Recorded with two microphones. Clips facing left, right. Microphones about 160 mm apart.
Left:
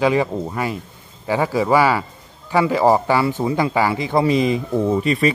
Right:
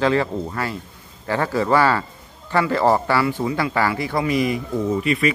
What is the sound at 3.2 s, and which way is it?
Speech, 25° left (ahead or behind).